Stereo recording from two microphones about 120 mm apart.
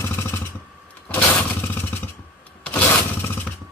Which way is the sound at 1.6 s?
20° left (ahead or behind).